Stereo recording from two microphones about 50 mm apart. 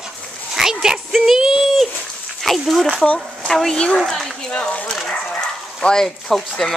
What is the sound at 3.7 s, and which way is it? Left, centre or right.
Speech, centre.